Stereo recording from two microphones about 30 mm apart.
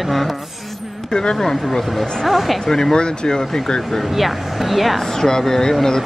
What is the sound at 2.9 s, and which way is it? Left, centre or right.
Speech, left.